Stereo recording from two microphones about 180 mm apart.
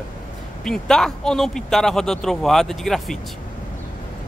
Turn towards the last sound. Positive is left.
turn(degrees=0)  # may be behind; listen again after turning